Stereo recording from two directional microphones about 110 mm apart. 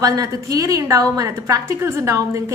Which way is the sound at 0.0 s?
35° right (ahead or behind).